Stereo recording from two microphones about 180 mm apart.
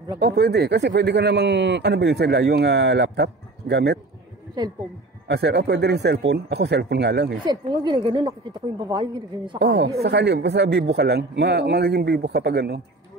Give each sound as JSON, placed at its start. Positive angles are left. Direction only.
{"t": 0.2, "sound": "speech", "side_deg": -65}
{"t": 5.3, "sound": "speech", "side_deg": -65}
{"t": 7.4, "sound": "a woman's voice", "side_deg": -25}
{"t": 9.6, "sound": "speech", "side_deg": -70}